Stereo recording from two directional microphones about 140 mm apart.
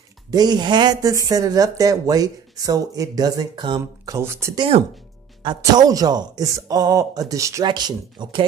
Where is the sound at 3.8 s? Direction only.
20° right (ahead or behind).